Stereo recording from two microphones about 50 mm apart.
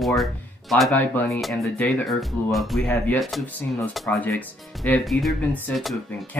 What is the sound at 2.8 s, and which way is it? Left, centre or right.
Speech, left.